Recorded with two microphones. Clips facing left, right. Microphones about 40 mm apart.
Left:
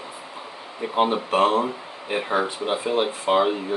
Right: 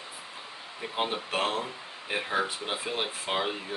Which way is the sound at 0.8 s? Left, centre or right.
Centre.